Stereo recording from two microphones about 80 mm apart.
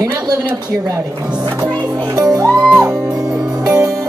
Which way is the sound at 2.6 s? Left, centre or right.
Centre.